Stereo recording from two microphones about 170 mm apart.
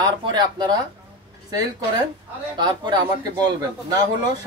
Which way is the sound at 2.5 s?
25° right (ahead or behind).